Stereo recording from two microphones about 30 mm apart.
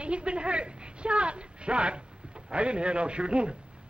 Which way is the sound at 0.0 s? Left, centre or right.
Right.